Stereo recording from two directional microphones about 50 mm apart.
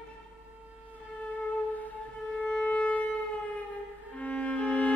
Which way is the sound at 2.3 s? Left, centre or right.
Left.